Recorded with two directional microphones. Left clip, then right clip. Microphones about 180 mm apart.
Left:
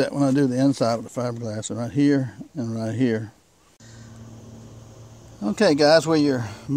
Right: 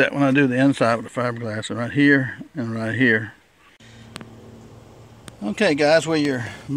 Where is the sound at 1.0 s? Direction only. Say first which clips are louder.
Right 3 dB; 5° left (ahead or behind).